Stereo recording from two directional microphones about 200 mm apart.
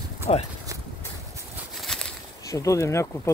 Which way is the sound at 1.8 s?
Centre (ahead or behind).